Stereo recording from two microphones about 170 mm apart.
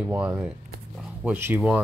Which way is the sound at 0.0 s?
10° right (ahead or behind).